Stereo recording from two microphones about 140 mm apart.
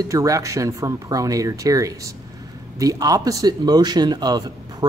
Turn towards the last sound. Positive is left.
turn(degrees=-30)  # may be behind; listen again after turning